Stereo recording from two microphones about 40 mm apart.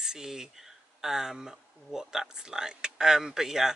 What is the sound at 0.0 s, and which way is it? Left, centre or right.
Speech, centre.